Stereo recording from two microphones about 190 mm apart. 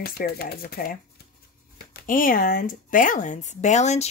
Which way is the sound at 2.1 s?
45° left (ahead or behind).